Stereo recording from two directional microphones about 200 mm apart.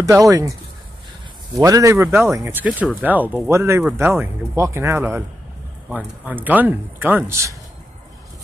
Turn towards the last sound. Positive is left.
turn(degrees=-15)  # may be behind; listen again after turning